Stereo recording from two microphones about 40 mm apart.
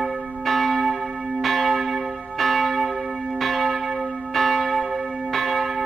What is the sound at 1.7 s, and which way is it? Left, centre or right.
Church bell, centre.